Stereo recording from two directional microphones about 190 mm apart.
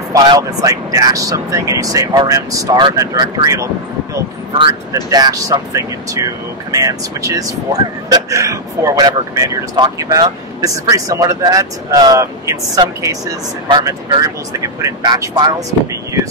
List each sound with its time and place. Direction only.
0.1 s speech: 20° right (ahead or behind)
5.1 s speech: 20° right (ahead or behind)